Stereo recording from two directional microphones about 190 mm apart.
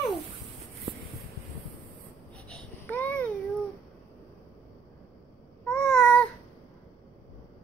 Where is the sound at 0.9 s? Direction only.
25° right (ahead or behind).